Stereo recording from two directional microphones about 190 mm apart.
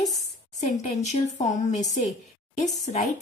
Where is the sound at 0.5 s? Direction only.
35° left (ahead or behind).